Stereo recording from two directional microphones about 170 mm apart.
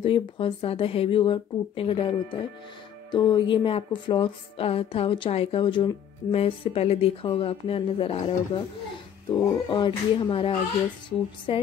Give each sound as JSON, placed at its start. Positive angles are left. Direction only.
{"t": 0.0, "sound": "music", "side_deg": 30}
{"t": 9.3, "sound": "speech", "side_deg": 25}